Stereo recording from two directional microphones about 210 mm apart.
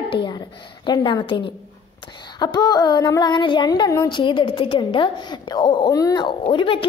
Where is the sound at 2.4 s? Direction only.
20° left (ahead or behind).